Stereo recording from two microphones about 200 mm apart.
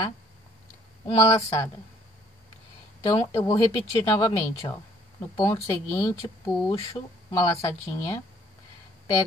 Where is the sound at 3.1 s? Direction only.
25° left (ahead or behind).